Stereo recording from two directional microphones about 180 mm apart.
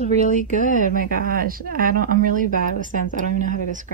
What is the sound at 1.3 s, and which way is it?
Speech, 55° right (ahead or behind).